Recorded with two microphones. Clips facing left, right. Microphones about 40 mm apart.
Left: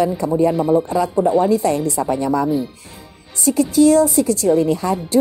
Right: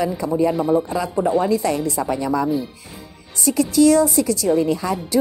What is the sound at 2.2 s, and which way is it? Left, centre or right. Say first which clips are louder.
Speech: left 2 dB; left.